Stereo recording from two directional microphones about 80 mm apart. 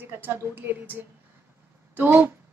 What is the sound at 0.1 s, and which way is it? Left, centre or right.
A woman's voice, right.